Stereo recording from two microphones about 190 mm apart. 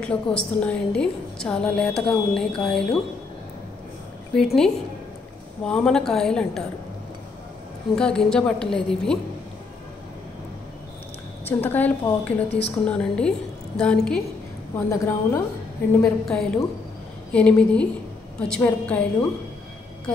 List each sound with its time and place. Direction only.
0.0 s a woman's voice: 5° left (ahead or behind)
4.3 s a woman's voice: 5° left (ahead or behind)
7.9 s a woman's voice: 5° left (ahead or behind)
11.4 s a woman's voice: 10° left (ahead or behind)
14.9 s a woman's voice: 15° left (ahead or behind)